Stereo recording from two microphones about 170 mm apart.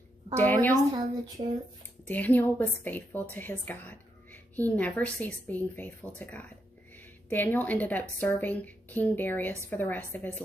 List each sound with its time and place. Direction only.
0.4 s a woman's voice: 10° left (ahead or behind)
0.9 s a woman's voice: 25° right (ahead or behind)
2.0 s a woman's voice: 10° left (ahead or behind)